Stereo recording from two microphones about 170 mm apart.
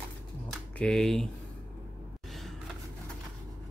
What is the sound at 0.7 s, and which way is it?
Speech, 5° left (ahead or behind).